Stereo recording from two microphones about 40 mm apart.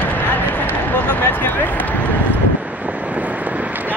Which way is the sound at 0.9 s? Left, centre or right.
Left.